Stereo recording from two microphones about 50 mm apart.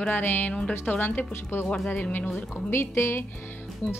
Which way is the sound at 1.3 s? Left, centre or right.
Left.